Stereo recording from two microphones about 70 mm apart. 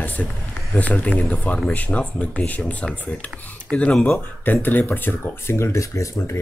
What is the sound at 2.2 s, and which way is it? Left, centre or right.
Speech, left.